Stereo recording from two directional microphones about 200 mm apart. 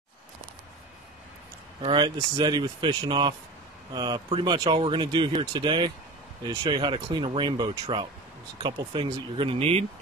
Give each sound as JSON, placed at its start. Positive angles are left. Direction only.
{"t": 1.8, "sound": "speech", "side_deg": -25}